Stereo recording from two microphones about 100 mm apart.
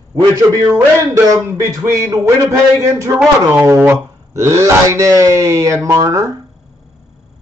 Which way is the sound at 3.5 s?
25° right (ahead or behind).